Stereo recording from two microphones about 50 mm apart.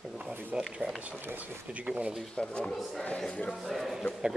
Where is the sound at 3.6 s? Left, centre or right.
Centre.